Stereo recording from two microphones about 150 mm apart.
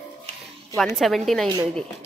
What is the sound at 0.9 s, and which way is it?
Speech, centre (ahead or behind).